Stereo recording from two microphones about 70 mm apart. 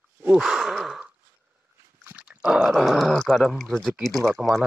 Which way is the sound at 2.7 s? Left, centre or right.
Centre.